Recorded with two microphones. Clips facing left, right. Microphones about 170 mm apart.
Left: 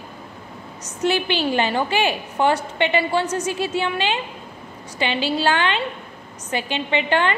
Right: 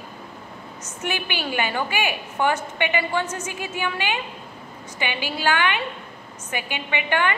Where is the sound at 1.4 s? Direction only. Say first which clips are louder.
Left 5 dB; 30° left (ahead or behind).